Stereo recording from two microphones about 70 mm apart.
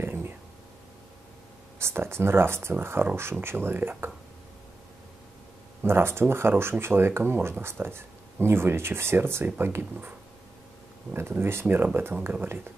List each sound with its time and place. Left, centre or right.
0.0 s a sound: right
1.8 s speech: right
5.8 s speech: right
11.1 s speech: right